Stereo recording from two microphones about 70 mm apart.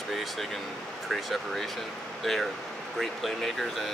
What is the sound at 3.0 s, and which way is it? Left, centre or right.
Speech, centre.